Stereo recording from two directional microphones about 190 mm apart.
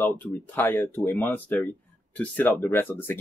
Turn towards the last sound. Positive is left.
turn(degrees=10)  # may be behind; listen again after turning